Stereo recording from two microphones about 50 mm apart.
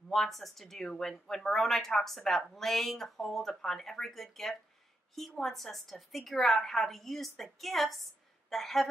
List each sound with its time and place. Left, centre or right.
0.1 s a woman's voice: centre